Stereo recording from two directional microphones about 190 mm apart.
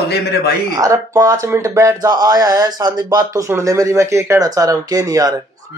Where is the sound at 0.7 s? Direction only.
15° right (ahead or behind).